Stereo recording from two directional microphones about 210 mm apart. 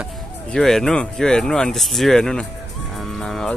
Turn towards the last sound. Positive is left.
turn(degrees=0)  # may be behind; listen again after turning